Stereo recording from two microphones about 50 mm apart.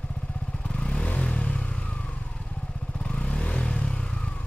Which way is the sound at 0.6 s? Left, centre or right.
Left.